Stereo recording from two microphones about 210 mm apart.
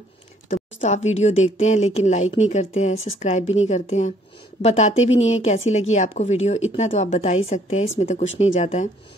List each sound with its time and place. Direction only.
0.5 s speech: 35° left (ahead or behind)